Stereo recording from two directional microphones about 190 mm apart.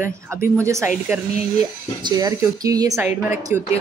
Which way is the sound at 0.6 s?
15° right (ahead or behind).